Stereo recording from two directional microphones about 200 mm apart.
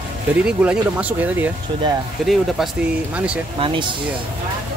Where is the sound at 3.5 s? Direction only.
25° right (ahead or behind).